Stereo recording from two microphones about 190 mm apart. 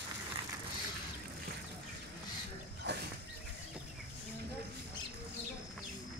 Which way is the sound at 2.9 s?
60° right (ahead or behind).